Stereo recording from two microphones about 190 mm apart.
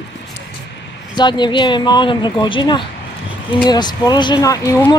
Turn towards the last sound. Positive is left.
turn(degrees=15)  # may be behind; listen again after turning